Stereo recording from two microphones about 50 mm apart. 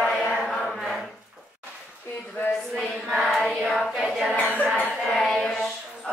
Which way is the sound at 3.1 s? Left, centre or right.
Centre.